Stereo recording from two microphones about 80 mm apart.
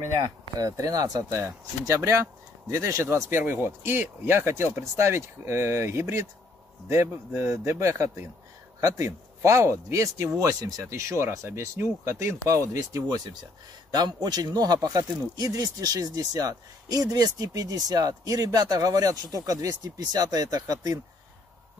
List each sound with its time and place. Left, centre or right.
0.6 s speech: right
1.3 s speech: right